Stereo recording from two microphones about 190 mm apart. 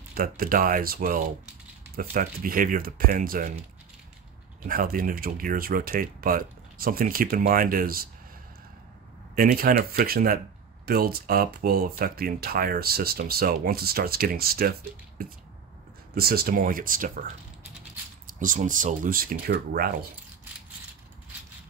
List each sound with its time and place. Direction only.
0.1 s speech: 50° right (ahead or behind)
4.6 s speech: 50° right (ahead or behind)
9.3 s speech: 50° right (ahead or behind)